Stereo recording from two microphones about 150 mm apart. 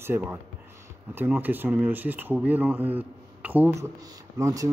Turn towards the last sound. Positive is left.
turn(degrees=-20)  # may be behind; listen again after turning